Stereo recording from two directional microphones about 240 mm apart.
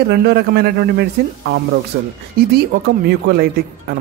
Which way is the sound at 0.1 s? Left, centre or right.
Right.